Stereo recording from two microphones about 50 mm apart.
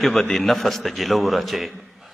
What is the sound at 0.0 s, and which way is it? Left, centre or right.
A man's voice, centre.